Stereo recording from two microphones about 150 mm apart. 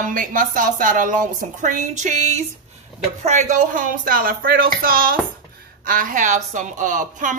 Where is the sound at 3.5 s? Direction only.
60° right (ahead or behind).